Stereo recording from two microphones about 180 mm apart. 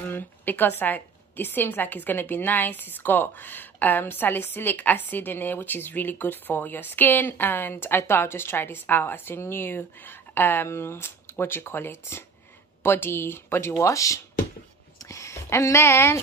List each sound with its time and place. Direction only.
0.1 s a woman's voice: 10° left (ahead or behind)